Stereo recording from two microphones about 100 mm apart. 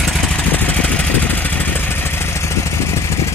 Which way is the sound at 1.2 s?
15° left (ahead or behind).